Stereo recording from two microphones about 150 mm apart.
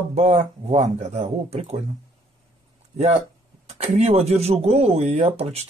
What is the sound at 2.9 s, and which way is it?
Speech, 45° right (ahead or behind).